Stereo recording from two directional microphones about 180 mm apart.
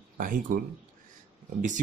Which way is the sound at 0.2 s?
50° right (ahead or behind).